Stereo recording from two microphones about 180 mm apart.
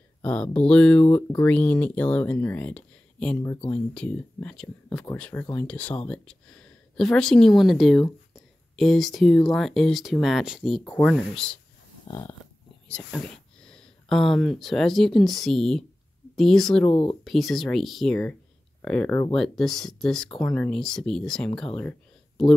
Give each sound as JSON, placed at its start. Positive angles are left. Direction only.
{"t": 0.2, "sound": "speech", "side_deg": 5}
{"t": 12.1, "sound": "dog", "side_deg": 20}
{"t": 12.8, "sound": "speech", "side_deg": 5}
{"t": 16.9, "sound": "dog", "side_deg": 30}
{"t": 17.2, "sound": "speech", "side_deg": 0}